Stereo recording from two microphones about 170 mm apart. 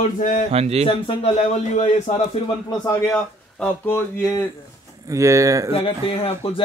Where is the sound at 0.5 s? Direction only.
40° right (ahead or behind).